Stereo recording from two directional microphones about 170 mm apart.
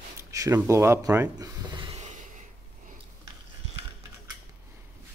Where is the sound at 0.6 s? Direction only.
15° right (ahead or behind).